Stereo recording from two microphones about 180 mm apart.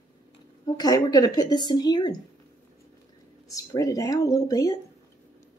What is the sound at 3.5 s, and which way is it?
Speech, 20° left (ahead or behind).